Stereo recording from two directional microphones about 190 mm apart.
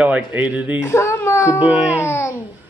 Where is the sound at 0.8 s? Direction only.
15° left (ahead or behind).